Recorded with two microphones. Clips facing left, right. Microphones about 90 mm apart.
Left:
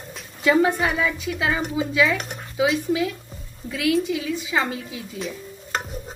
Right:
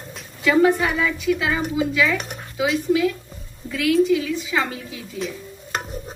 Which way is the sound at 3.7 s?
20° left (ahead or behind).